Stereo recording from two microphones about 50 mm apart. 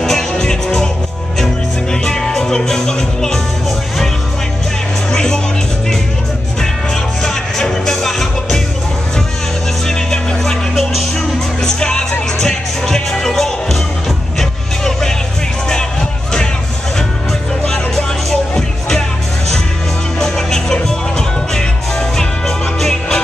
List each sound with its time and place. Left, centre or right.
0.0 s music: centre
5.1 s music: centre
7.2 s music: centre
9.8 s music: centre
10.7 s music: centre
11.6 s music: centre
14.9 s music: centre
17.6 s music: centre
20.2 s music: centre